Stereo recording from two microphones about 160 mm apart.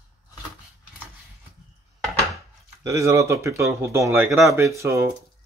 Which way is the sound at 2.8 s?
20° right (ahead or behind).